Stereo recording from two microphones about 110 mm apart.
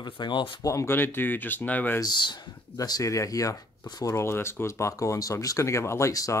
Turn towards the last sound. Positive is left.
turn(degrees=30)  # may be behind; listen again after turning